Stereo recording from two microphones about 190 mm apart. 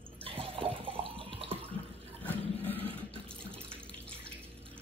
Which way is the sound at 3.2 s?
5° left (ahead or behind).